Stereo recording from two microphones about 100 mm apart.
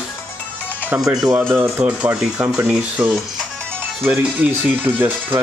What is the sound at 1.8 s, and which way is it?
Speech, 10° right (ahead or behind).